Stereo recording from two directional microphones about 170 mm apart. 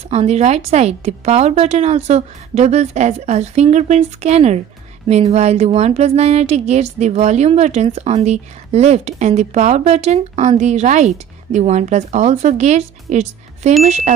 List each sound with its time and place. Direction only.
0.1 s speech: 40° right (ahead or behind)